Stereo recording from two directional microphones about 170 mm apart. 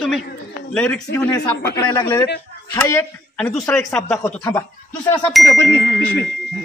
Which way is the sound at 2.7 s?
15° left (ahead or behind).